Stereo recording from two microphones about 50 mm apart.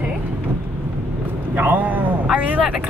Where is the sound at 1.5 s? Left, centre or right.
Right.